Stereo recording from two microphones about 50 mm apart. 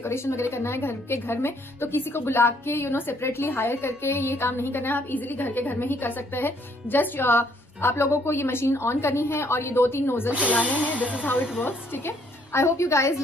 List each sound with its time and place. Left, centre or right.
0.1 s a woman's voice: left
10.5 s speech: left
11.6 s a woman's voice: left
12.5 s a woman's voice: left